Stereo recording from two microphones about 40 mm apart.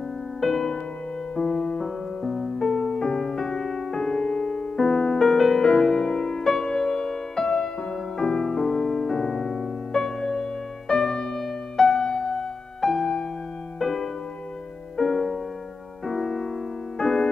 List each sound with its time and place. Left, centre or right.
0.4 s music: centre
13.7 s music: centre